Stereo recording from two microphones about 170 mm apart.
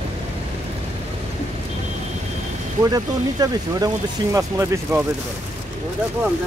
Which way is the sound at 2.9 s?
20° right (ahead or behind).